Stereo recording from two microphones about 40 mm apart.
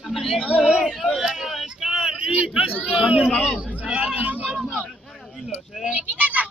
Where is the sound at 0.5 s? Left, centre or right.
Centre.